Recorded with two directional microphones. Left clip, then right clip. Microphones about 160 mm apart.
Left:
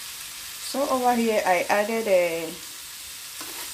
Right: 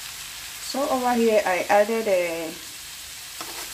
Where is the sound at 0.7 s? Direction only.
15° left (ahead or behind).